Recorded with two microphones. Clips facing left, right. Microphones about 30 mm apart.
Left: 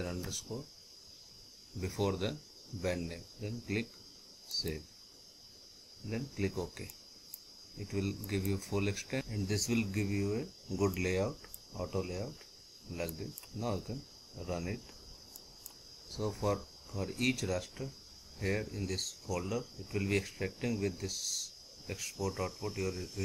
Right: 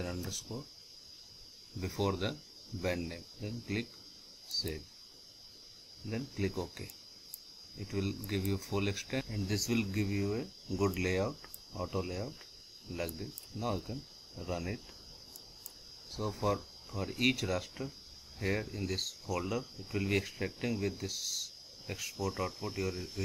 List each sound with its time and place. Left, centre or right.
0.2 s speech: centre
1.8 s speech: centre
6.0 s speech: centre
16.1 s speech: centre